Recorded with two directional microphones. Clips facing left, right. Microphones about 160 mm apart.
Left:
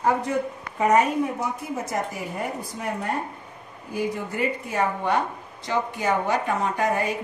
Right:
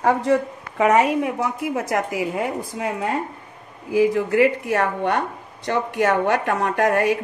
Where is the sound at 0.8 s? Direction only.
90° right.